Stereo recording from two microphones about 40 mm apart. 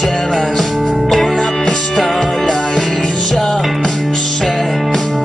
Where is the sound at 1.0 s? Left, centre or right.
Centre.